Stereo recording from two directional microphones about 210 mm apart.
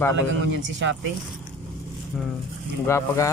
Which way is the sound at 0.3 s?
60° right (ahead or behind).